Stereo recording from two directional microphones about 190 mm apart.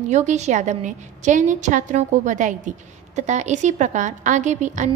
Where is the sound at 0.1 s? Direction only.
40° right (ahead or behind).